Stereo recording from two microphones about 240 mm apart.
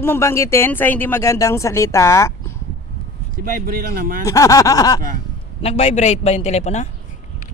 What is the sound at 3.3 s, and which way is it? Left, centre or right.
Speech, right.